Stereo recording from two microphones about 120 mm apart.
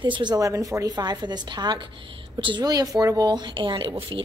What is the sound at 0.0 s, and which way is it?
A woman's voice, 40° right (ahead or behind).